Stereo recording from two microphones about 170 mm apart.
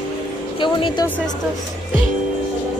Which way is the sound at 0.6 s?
30° left (ahead or behind).